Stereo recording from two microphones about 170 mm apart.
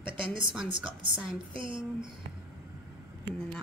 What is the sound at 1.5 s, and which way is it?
Speech, 30° right (ahead or behind).